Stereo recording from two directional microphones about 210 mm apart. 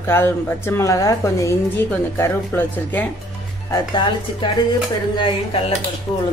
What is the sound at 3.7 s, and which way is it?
Speech, 20° left (ahead or behind).